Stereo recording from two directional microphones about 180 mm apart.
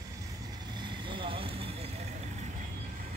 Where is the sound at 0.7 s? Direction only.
25° right (ahead or behind).